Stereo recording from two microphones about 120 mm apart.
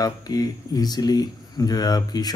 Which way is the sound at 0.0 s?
30° left (ahead or behind).